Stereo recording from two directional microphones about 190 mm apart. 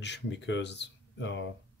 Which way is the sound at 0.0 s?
65° left (ahead or behind).